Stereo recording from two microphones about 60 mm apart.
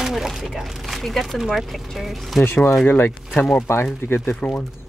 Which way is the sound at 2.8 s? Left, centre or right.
Left.